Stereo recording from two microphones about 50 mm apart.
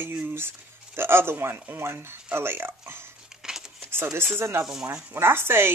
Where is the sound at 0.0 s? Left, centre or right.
Right.